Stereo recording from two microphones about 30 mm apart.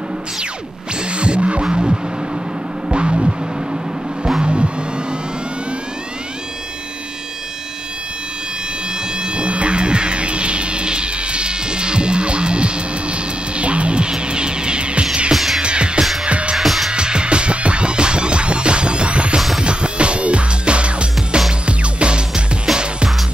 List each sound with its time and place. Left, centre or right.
1.1 s throbbing: right
2.9 s music: right
9.2 s cat: right
15.3 s music: centre
15.6 s music: right
16.5 s music: centre
16.9 s music: right
22.7 s music: centre